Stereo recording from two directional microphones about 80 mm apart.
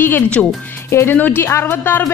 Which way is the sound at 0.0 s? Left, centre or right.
Left.